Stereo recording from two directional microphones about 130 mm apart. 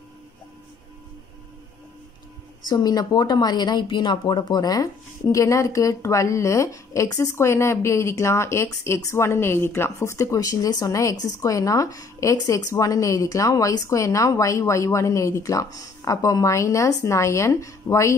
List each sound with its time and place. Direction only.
2.7 s speech: 30° left (ahead or behind)